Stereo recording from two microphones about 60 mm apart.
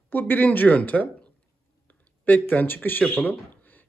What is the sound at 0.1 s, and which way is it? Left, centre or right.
Speech, left.